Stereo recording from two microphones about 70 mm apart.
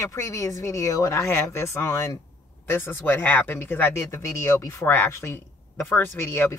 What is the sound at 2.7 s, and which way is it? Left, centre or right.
Speech, left.